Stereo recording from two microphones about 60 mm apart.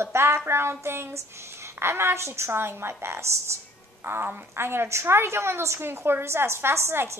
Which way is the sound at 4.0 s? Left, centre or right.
Right.